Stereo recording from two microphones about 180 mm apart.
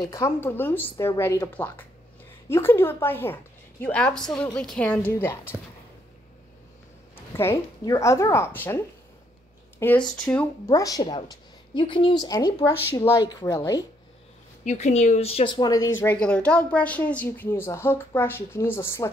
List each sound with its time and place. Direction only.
0.1 s a woman's voice: 15° left (ahead or behind)
7.3 s a woman's voice: 15° left (ahead or behind)
10.7 s a woman's voice: 20° left (ahead or behind)
14.6 s speech: 40° left (ahead or behind); by 15.9 s 20° left (ahead or behind)
16.0 s a woman's voice: 10° left (ahead or behind)